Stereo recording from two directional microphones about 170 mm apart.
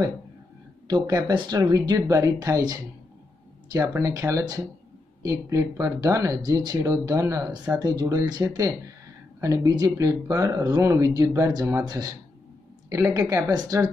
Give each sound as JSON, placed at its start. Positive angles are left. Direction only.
{"t": 0.8, "sound": "speech", "side_deg": -25}